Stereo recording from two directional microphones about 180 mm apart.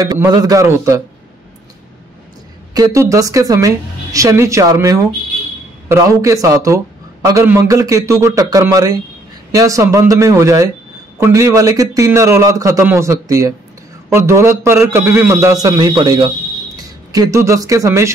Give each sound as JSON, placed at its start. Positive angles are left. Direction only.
{"t": 0.0, "sound": "a man's voice", "side_deg": -20}
{"t": 2.7, "sound": "a man's voice", "side_deg": -20}